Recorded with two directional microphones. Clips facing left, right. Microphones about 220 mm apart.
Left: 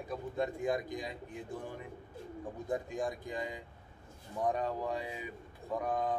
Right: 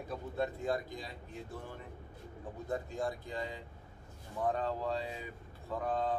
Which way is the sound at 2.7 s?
15° left (ahead or behind).